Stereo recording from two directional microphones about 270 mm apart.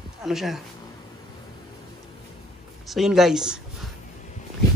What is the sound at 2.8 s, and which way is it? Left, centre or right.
Speech, centre.